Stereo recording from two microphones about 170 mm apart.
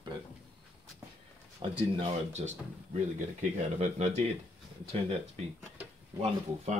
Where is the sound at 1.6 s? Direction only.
35° right (ahead or behind).